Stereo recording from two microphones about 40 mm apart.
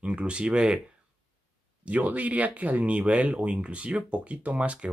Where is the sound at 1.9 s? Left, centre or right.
Right.